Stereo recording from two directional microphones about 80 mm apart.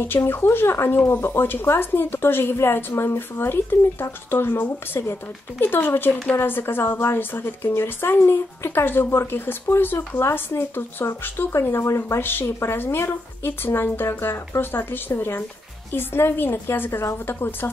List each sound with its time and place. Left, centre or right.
0.0 s speech: left